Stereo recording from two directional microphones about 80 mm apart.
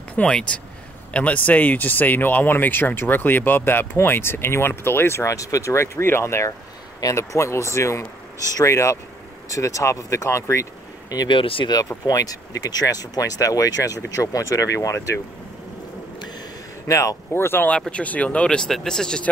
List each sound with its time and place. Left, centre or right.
0.1 s speech: centre; by 11.2 s left
11.2 s speech: left
11.9 s speech: left
16.8 s speech: left
17.3 s speech: left
17.6 s speech: centre